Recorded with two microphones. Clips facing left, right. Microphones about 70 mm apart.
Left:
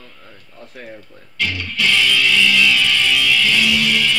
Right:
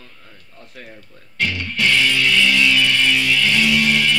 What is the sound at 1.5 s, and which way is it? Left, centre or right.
Music, right.